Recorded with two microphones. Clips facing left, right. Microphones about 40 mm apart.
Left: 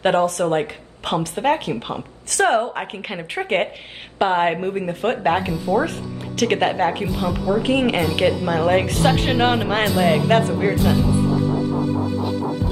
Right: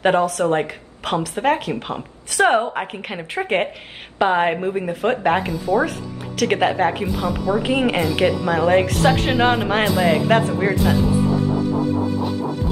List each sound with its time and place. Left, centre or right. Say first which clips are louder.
0.0 s a woman's voice: right 1 dB; centre
2.3 s a woman's voice: right 1 dB; centre
2.7 s speech: right 1 dB; centre